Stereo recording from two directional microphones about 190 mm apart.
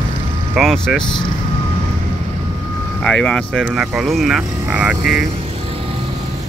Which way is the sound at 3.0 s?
5° left (ahead or behind).